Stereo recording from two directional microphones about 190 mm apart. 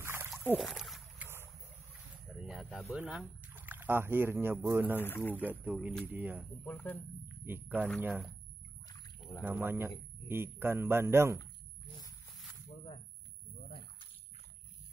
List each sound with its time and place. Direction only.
0.0 s a sound: 10° right (ahead or behind)
0.6 s a sound: centre (ahead or behind)
2.4 s speech: centre (ahead or behind)
4.9 s speech: 10° left (ahead or behind)
5.5 s a man's voice: 10° right (ahead or behind)
6.6 s speech: 10° left (ahead or behind)
7.4 s a man's voice: 10° right (ahead or behind)
9.4 s a man's voice: 10° right (ahead or behind)